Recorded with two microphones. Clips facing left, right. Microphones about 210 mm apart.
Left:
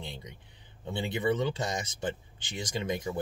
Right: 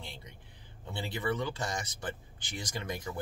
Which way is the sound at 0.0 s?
20° left (ahead or behind).